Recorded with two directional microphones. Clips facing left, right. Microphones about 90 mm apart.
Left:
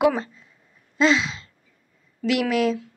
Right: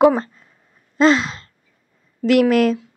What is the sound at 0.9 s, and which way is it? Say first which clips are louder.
Sigh: right 5 dB; 45° right (ahead or behind).